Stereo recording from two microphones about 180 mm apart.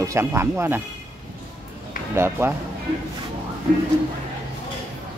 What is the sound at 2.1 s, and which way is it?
Speech, 15° right (ahead or behind).